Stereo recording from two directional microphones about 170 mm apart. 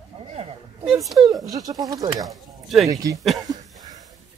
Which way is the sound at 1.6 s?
20° right (ahead or behind).